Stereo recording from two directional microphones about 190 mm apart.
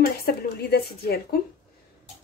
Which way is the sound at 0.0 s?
50° left (ahead or behind).